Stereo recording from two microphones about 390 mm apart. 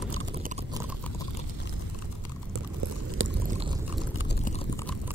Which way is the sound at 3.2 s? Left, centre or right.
Right.